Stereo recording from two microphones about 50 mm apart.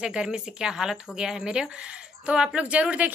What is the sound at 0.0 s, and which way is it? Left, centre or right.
A woman's voice, centre.